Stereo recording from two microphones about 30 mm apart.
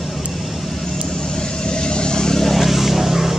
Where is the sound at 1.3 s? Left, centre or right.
Left.